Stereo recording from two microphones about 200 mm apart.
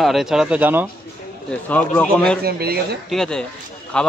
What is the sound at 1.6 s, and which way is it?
Speech, 10° left (ahead or behind).